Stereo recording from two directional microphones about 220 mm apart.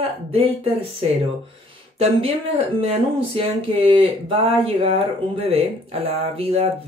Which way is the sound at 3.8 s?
25° right (ahead or behind).